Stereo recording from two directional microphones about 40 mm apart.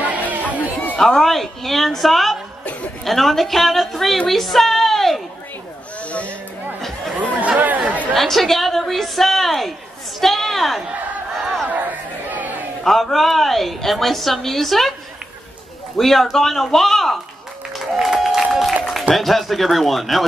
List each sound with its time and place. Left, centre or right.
0.0 s chatter: right
0.6 s chatter: left
0.9 s a woman's voice: centre
6.0 s a sound: left
7.2 s chatter: right
8.1 s a woman's voice: centre
11.7 s crowd: right
12.8 s a woman's voice: centre
16.0 s a woman's voice: centre
18.0 s applause: centre
19.1 s a woman's voice: centre